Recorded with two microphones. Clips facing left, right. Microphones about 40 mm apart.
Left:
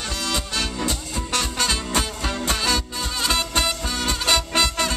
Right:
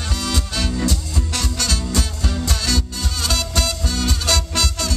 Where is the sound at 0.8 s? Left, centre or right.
Left.